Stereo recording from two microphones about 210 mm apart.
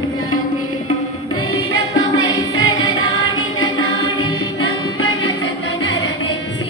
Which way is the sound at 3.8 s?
75° left (ahead or behind).